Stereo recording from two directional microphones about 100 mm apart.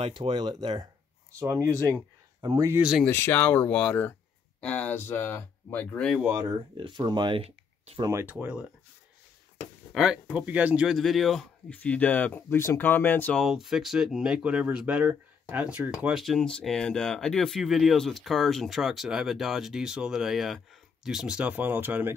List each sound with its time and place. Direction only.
0.3 s speech: 50° right (ahead or behind)
1.4 s speech: 30° right (ahead or behind)
3.1 s speech: 25° left (ahead or behind)
6.5 s speech: 50° right (ahead or behind)
7.4 s a sound: 90° right
8.0 s speech: 30° right (ahead or behind)
8.3 s speech: 15° right (ahead or behind)
9.9 s speech: 10° right (ahead or behind)
10.9 s speech: centre (ahead or behind)
11.7 s speech: 15° left (ahead or behind)
13.3 s speech: centre (ahead or behind)
16.1 s speech: centre (ahead or behind); by 22.1 s 20° right (ahead or behind)